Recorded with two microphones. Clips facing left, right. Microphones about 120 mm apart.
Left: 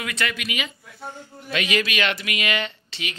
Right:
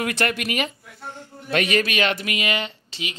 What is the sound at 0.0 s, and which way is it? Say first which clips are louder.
Speech: right 5 dB; 55° right (ahead or behind).